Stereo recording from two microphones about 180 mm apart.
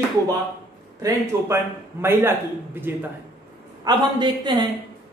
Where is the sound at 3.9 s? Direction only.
25° right (ahead or behind).